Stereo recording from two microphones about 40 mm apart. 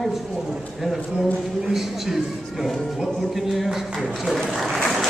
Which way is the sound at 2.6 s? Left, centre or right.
Centre.